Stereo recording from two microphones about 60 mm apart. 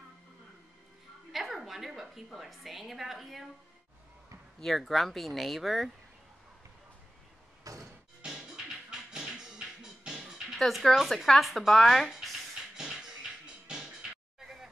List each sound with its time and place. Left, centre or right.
1.3 s a woman's voice: centre
4.6 s speech: centre
7.6 s music: right
8.2 s music: centre
10.6 s speech: centre
12.7 s music: centre
14.4 s a sound: centre